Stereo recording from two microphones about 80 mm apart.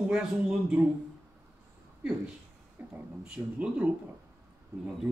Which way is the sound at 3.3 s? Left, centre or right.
Centre.